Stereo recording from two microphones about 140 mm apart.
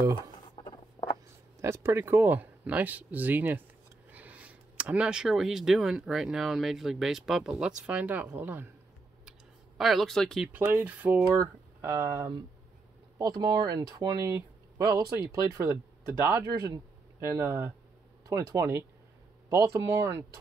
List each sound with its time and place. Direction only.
0.6 s rodents: 30° left (ahead or behind)
1.6 s speech: 20° right (ahead or behind)
9.8 s speech: centre (ahead or behind)
10.5 s speech: 10° right (ahead or behind)